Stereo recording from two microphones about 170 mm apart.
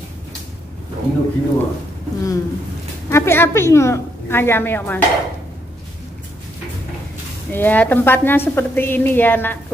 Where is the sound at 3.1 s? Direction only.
15° left (ahead or behind).